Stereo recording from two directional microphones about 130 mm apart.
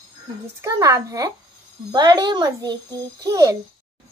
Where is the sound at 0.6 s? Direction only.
25° right (ahead or behind).